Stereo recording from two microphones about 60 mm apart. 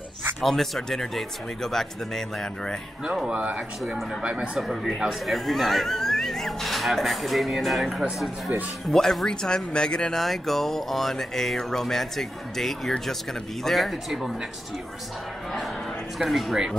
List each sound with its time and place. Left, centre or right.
0.4 s speech: centre
3.3 s speech: centre
3.8 s speech: centre
4.2 s speech: centre
8.9 s speech: centre
16.2 s speech: centre